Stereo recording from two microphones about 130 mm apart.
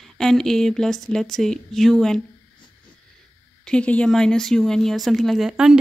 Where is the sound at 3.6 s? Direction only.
10° left (ahead or behind).